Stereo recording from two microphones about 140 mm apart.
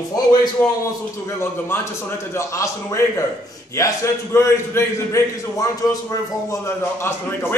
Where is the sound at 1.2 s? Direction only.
20° left (ahead or behind).